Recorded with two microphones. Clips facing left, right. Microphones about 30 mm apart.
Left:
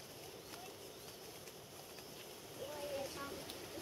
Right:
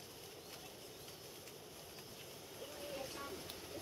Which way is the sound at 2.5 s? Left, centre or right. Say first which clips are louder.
Left 4 dB; centre.